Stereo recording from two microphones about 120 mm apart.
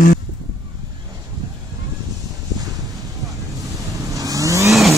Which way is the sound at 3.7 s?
30° right (ahead or behind).